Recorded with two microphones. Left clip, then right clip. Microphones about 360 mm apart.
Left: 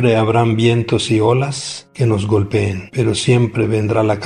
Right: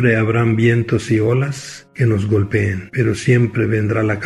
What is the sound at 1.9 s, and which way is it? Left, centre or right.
Speech, left.